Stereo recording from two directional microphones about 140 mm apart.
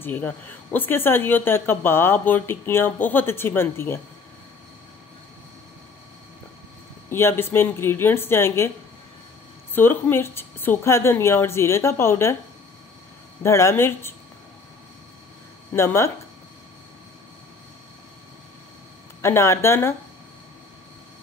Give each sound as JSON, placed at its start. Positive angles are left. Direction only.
{"t": 0.0, "sound": "speech", "side_deg": 15}
{"t": 7.1, "sound": "speech", "side_deg": 15}
{"t": 9.8, "sound": "a woman's voice", "side_deg": 15}
{"t": 13.4, "sound": "a woman's voice", "side_deg": 20}
{"t": 15.7, "sound": "speech", "side_deg": 20}
{"t": 19.2, "sound": "speech", "side_deg": 20}